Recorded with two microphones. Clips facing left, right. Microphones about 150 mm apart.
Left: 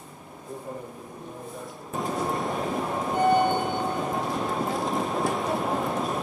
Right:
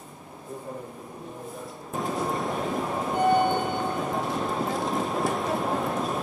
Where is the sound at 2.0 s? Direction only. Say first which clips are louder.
Even; centre (ahead or behind).